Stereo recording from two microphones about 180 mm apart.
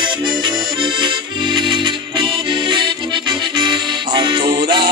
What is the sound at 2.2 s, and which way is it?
Music, 25° right (ahead or behind).